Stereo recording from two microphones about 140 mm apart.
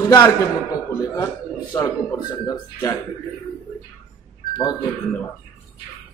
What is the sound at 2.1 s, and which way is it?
Speech, 25° left (ahead or behind).